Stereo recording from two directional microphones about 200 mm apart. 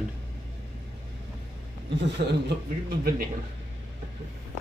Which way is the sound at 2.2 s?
55° right (ahead or behind).